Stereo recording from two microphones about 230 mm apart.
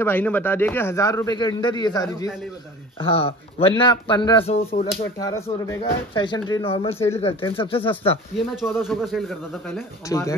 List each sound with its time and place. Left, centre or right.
0.0 s a man's voice: centre; by 4.8 s left
5.2 s a man's voice: centre
8.5 s speech: centre
10.0 s a man's voice: centre